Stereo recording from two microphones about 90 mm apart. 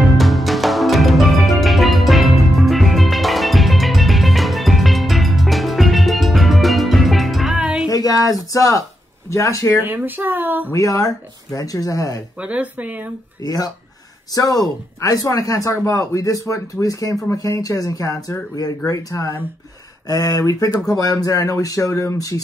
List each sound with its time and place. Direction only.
0.2 s music: centre (ahead or behind)
7.9 s a sound: 40° left (ahead or behind)
9.3 s speech: 35° left (ahead or behind)
9.8 s speech: 20° right (ahead or behind)
10.7 s speech: 40° left (ahead or behind)
12.4 s speech: 15° right (ahead or behind)
13.4 s speech: 45° left (ahead or behind)